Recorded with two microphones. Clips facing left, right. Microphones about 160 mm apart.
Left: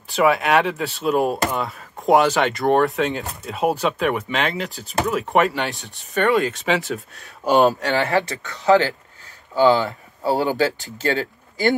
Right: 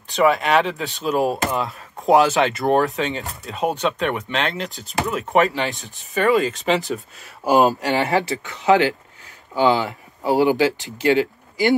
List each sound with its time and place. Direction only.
0.1 s speech: centre (ahead or behind)
7.9 s speech: 15° right (ahead or behind)